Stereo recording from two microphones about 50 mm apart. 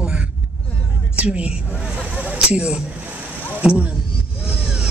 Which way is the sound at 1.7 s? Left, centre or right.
Centre.